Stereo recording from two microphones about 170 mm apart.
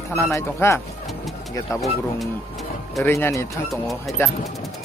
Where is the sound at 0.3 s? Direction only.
15° left (ahead or behind).